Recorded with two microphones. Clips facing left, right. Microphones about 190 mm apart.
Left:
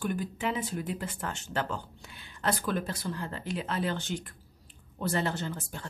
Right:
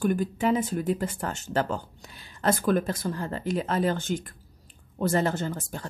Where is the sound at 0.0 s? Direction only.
45° right (ahead or behind).